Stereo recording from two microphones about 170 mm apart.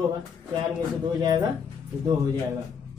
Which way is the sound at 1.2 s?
25° right (ahead or behind).